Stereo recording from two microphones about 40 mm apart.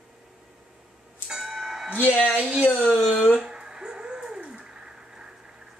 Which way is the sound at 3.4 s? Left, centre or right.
Centre.